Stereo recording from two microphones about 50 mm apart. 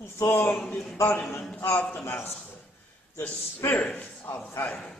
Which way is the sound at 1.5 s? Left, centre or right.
Left.